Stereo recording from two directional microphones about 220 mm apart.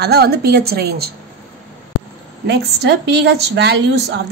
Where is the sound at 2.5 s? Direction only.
50° right (ahead or behind).